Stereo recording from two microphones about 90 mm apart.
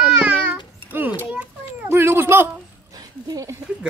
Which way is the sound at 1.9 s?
25° right (ahead or behind).